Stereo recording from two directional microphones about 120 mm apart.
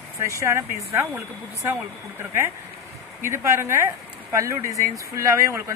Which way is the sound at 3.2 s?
20° right (ahead or behind).